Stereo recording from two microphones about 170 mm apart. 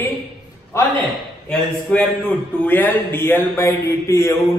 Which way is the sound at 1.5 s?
5° left (ahead or behind).